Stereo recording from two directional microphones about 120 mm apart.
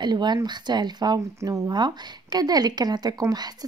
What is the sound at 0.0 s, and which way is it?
Speech, 35° right (ahead or behind).